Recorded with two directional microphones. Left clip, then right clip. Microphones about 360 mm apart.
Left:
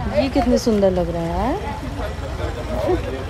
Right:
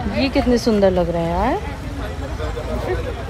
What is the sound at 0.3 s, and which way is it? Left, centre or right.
Speech, centre.